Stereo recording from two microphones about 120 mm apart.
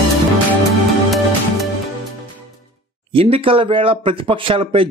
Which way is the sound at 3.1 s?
50° right (ahead or behind).